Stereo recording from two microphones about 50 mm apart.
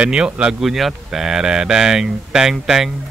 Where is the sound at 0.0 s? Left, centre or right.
Right.